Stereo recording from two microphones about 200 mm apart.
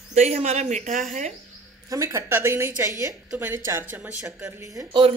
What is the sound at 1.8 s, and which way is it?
A woman's voice, 15° right (ahead or behind).